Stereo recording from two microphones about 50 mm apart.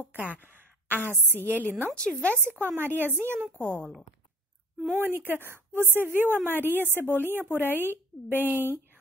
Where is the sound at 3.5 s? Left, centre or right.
Left.